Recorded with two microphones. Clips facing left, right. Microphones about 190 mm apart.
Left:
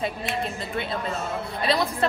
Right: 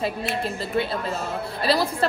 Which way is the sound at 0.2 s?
Centre (ahead or behind).